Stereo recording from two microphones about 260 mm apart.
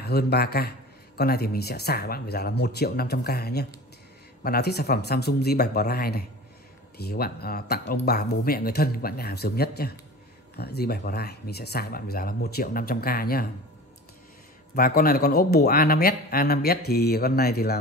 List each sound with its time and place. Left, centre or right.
0.0 s a man's voice: left
14.8 s a man's voice: left